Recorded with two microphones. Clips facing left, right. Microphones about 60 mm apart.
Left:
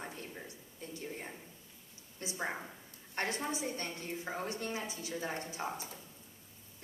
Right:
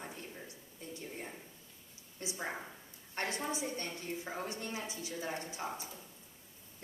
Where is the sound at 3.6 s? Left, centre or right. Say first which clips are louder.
Left 1 dB; left.